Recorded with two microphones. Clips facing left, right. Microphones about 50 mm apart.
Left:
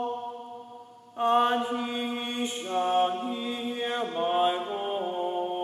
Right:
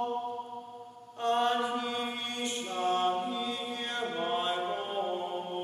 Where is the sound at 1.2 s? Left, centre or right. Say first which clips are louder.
Left 5 dB; left.